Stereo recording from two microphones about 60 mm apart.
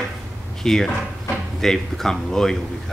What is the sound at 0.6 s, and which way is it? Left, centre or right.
Speech, centre.